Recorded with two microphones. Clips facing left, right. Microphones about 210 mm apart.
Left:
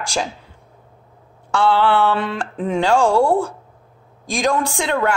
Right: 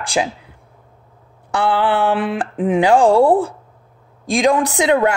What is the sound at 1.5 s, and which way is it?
Speech, 15° right (ahead or behind).